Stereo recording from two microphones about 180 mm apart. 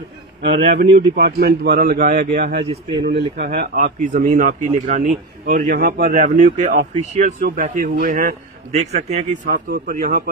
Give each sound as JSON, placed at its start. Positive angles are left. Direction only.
{"t": 0.6, "sound": "speech", "side_deg": -50}
{"t": 1.1, "sound": "speech", "side_deg": -65}
{"t": 2.6, "sound": "speech", "side_deg": -30}
{"t": 3.3, "sound": "speech", "side_deg": -50}
{"t": 5.4, "sound": "speech", "side_deg": -50}
{"t": 7.4, "sound": "speech", "side_deg": -50}
{"t": 8.7, "sound": "speech", "side_deg": -40}